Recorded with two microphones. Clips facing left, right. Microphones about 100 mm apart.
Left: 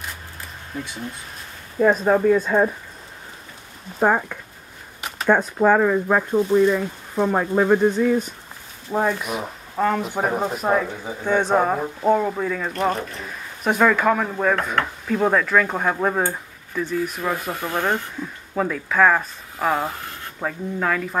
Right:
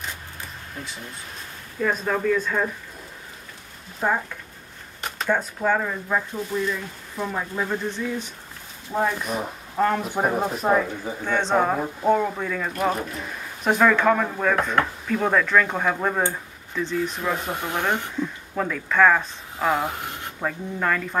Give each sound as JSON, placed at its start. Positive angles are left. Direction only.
{"t": 1.8, "sound": "speech", "side_deg": 40}
{"t": 4.0, "sound": "speech", "side_deg": 50}
{"t": 5.3, "sound": "speech", "side_deg": 55}
{"t": 8.9, "sound": "speech", "side_deg": 15}
{"t": 9.8, "sound": "speech", "side_deg": 0}
{"t": 12.7, "sound": "speech", "side_deg": -5}
{"t": 13.7, "sound": "speech", "side_deg": 5}
{"t": 17.5, "sound": "speech", "side_deg": -20}
{"t": 18.5, "sound": "speech", "side_deg": 5}
{"t": 19.9, "sound": "speech", "side_deg": -20}
{"t": 20.3, "sound": "speech", "side_deg": 5}